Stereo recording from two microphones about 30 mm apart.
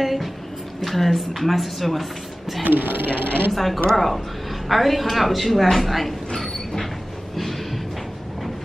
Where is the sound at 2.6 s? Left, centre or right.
Right.